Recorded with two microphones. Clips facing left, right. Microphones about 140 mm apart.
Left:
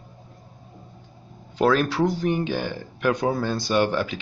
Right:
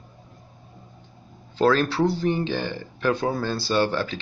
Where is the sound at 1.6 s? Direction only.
15° left (ahead or behind).